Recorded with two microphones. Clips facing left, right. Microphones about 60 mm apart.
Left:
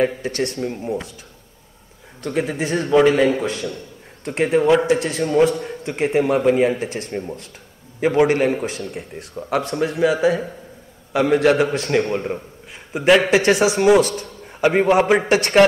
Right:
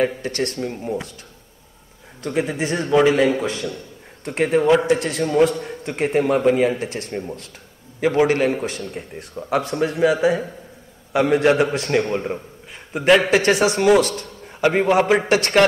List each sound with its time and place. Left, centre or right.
0.2 s a man's voice: centre
2.2 s a man's voice: centre